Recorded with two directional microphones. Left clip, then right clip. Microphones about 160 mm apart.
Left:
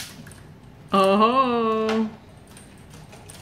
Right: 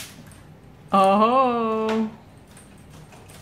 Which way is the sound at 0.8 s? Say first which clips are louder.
Right 1 dB; 10° right (ahead or behind).